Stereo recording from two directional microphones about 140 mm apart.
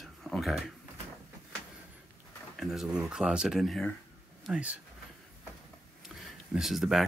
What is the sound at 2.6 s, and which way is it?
Speech, centre (ahead or behind).